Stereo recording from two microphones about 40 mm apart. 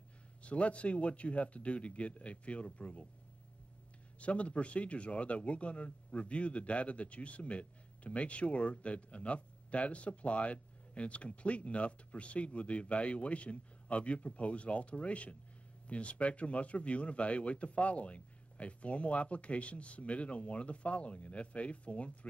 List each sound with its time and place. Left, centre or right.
0.4 s speech: left
4.2 s speech: left